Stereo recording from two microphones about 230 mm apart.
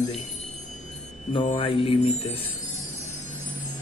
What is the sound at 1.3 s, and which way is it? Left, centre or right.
Music, left.